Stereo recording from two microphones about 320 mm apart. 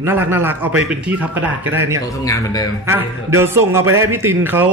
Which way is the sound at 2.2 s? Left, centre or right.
Centre.